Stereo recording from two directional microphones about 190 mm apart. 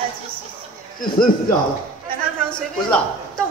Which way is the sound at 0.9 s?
50° left (ahead or behind).